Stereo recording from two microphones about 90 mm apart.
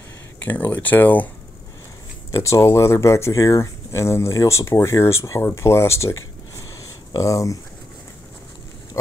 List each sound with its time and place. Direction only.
0.4 s speech: 20° left (ahead or behind)
2.3 s speech: 30° left (ahead or behind)
9.0 s pig: 35° left (ahead or behind)